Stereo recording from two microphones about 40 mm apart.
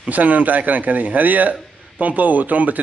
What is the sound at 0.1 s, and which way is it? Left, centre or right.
A man's voice, right.